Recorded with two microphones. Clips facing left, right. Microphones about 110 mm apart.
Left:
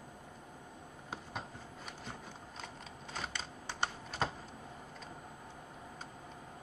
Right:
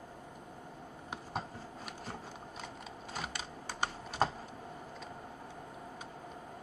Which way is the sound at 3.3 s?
10° right (ahead or behind).